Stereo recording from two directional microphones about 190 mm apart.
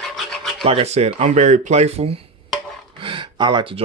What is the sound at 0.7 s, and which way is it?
Speech, 35° right (ahead or behind).